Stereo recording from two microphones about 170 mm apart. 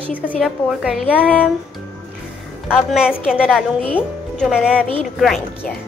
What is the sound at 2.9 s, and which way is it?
A woman's voice, 5° right (ahead or behind).